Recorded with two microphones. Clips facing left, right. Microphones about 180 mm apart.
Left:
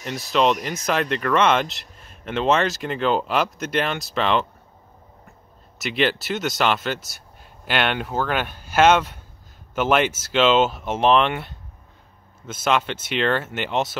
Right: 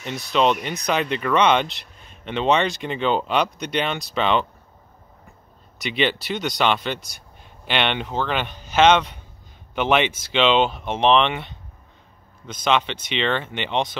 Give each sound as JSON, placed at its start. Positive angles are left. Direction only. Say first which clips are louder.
{"t": 0.0, "sound": "speech", "louder": "even", "side_deg": 0}
{"t": 5.8, "sound": "speech", "louder": "left 1 dB", "side_deg": 0}